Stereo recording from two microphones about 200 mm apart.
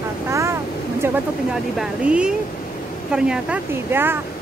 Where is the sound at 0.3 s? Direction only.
15° right (ahead or behind).